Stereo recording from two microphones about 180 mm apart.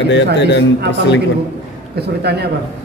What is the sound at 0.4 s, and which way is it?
Speech, 75° left (ahead or behind).